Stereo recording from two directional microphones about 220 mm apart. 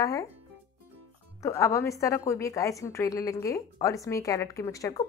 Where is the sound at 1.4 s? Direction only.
15° left (ahead or behind).